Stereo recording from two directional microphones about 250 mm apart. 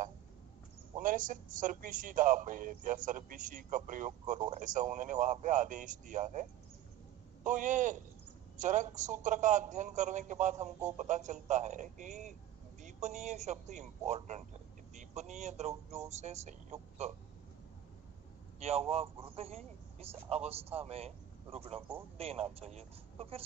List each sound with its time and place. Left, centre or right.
0.9 s a man's voice: right
7.4 s a man's voice: right
18.6 s a man's voice: right